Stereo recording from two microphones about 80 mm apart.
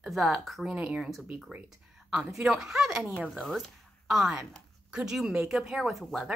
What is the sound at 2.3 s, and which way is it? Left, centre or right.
Speech, centre.